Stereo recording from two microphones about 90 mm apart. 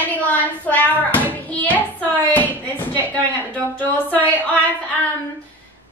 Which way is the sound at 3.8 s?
20° left (ahead or behind).